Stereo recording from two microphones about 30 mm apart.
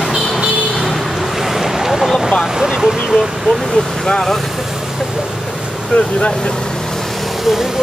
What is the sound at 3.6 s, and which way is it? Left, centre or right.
Vehicle, centre.